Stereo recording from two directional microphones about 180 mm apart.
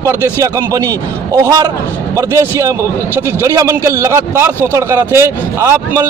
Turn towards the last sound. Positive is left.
turn(degrees=-15)  # may be behind; listen again after turning